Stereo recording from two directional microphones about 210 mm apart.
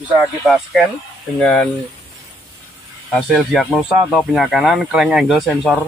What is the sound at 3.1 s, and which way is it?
A man's voice, centre (ahead or behind).